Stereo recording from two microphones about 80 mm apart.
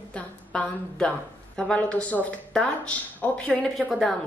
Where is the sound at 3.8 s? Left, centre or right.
Centre.